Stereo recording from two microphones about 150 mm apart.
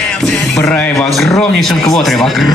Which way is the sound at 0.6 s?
5° left (ahead or behind).